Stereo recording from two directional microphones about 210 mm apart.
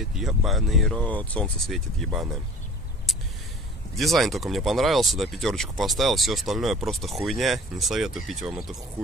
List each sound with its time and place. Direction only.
0.0 s speech: centre (ahead or behind)
3.1 s a sound: centre (ahead or behind)
3.9 s speech: centre (ahead or behind)